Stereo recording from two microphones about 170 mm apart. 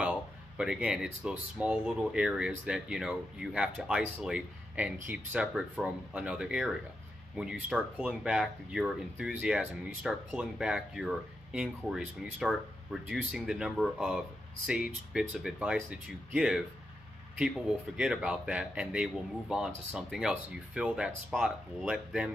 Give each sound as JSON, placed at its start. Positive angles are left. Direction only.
{"t": 0.0, "sound": "speech", "side_deg": -5}